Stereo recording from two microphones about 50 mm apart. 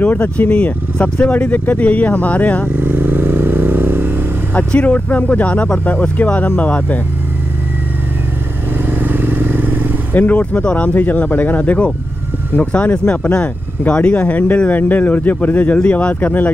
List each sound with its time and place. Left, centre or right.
0.0 s speech: left
2.8 s motorcycle: right
4.6 s speech: left
8.8 s vehicle: right
10.1 s speech: left
10.9 s speech: left